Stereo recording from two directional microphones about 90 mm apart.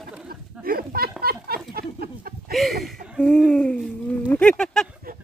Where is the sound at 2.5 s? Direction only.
Centre (ahead or behind).